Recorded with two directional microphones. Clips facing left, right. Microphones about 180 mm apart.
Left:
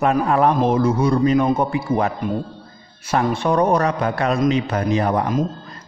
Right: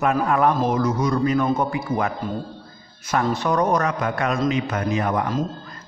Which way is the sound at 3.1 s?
30° left (ahead or behind).